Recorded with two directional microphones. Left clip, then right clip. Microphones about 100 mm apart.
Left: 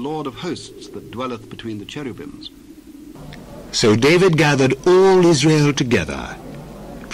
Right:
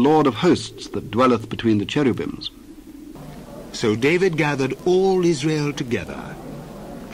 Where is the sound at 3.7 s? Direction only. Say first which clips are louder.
Left 5 dB; 30° right (ahead or behind).